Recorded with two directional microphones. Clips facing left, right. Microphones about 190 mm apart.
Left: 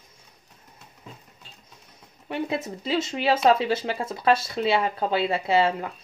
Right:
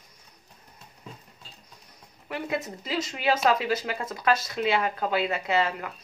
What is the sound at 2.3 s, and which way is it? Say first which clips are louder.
Speech: left 3 dB; 25° left (ahead or behind).